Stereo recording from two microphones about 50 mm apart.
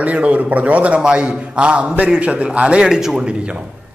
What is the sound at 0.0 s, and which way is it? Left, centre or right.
A man's voice, right.